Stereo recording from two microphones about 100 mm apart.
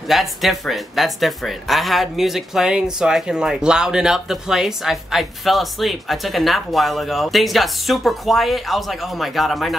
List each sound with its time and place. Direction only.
0.1 s speech: centre (ahead or behind)